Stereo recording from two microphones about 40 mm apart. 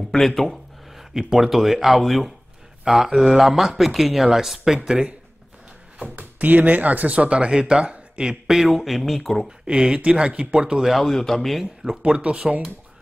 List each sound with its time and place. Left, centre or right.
0.1 s a sound: centre
1.1 s speech: centre
2.8 s speech: centre
4.8 s speech: right
5.9 s speech: right
7.2 s speech: right
8.5 s speech: centre
9.7 s speech: right
10.9 s speech: centre
11.8 s speech: right